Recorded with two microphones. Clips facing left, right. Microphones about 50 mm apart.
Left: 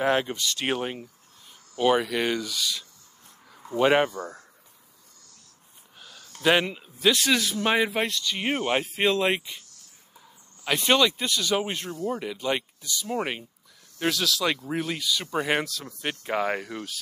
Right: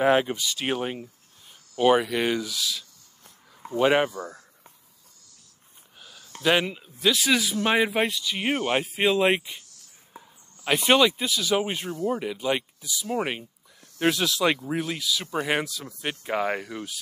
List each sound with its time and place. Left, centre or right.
0.0 s speech: centre
3.8 s speech: centre
5.9 s a sound: centre
6.4 s speech: centre
10.6 s speech: centre
13.9 s speech: right
14.7 s speech: centre